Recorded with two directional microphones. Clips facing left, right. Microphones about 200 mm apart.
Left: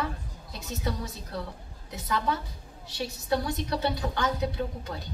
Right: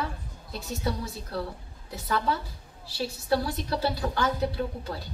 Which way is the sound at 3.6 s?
20° left (ahead or behind).